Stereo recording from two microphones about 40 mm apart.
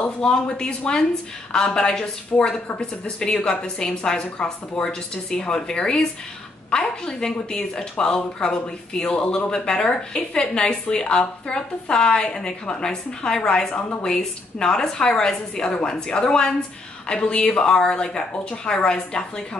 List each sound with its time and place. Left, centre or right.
0.2 s a woman's voice: centre